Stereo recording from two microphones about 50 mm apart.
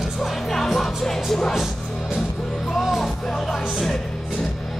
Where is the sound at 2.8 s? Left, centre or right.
Centre.